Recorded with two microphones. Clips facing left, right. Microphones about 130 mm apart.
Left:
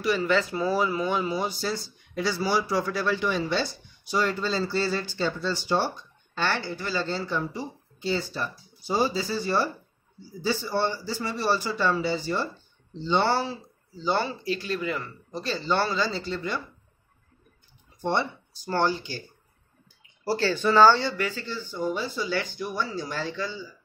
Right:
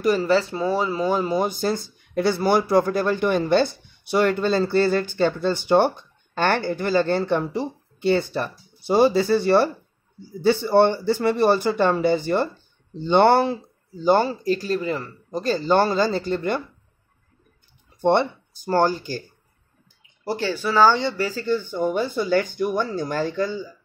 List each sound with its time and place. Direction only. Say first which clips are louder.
0.0 s speech: right 5 dB; 40° right (ahead or behind); by 16.6 s 55° right (ahead or behind)
18.0 s speech: right 8 dB; 55° right (ahead or behind)
20.2 s speech: even; 15° right (ahead or behind)
21.2 s speech: right 4 dB; 35° right (ahead or behind)
21.5 s speech: right 7 dB; 55° right (ahead or behind)